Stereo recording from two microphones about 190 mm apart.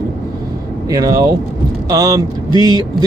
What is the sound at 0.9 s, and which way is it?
Speech, 20° right (ahead or behind).